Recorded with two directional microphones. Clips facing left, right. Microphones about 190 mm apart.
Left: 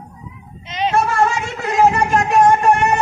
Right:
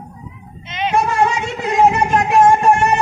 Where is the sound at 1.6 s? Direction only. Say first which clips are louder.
Right 1 dB; 20° right (ahead or behind).